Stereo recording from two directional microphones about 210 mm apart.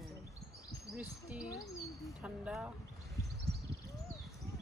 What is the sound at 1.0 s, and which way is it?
Speech, 5° right (ahead or behind).